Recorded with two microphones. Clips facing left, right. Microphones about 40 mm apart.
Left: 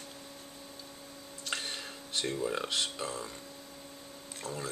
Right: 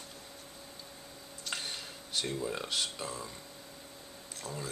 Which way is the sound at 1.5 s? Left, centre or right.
Centre.